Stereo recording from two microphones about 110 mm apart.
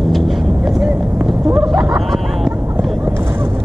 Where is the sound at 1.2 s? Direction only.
Centre (ahead or behind).